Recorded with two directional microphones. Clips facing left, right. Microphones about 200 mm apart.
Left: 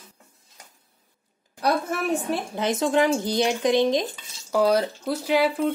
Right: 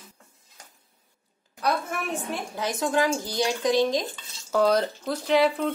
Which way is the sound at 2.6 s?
20° left (ahead or behind).